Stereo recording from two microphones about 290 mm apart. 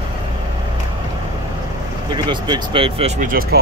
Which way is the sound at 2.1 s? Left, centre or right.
Centre.